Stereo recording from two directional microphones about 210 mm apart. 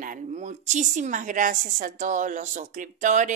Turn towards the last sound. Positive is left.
turn(degrees=-35)  # may be behind; listen again after turning